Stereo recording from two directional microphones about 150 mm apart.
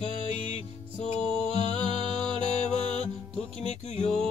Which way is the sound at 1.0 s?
50° left (ahead or behind).